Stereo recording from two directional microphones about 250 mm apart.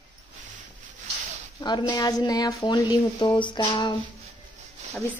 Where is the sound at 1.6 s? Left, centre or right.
Centre.